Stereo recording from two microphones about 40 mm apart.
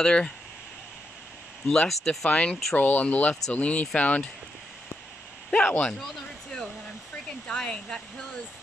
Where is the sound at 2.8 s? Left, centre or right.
Left.